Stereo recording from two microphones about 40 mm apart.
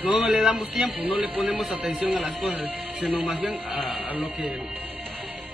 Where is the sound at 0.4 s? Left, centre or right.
Centre.